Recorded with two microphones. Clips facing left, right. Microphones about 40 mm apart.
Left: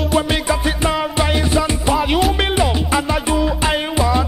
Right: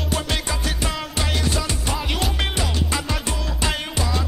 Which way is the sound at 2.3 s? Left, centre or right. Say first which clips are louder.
Left 8 dB; left.